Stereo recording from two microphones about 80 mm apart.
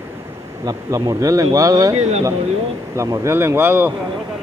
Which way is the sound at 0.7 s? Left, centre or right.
Right.